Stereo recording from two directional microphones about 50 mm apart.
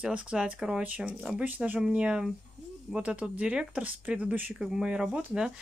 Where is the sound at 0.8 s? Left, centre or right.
Right.